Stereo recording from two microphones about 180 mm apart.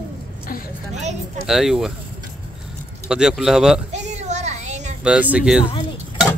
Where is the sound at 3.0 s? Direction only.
5° right (ahead or behind).